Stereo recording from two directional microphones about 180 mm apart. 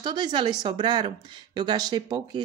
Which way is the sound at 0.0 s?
25° right (ahead or behind).